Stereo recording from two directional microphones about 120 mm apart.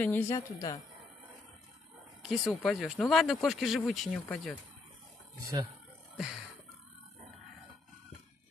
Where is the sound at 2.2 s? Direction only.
Centre (ahead or behind).